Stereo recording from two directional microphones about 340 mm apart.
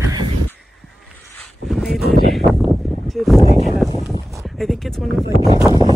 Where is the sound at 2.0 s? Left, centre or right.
Left.